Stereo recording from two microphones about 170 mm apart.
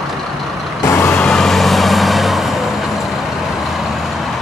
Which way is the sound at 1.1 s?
5° left (ahead or behind).